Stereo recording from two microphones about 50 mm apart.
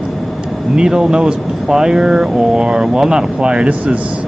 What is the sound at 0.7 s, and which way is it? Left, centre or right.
Speech, centre.